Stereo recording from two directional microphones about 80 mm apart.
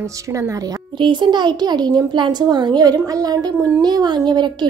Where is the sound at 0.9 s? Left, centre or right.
Right.